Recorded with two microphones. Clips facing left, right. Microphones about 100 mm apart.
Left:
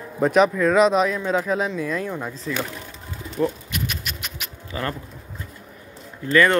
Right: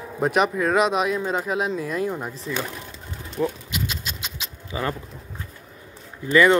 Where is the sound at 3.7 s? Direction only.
20° right (ahead or behind).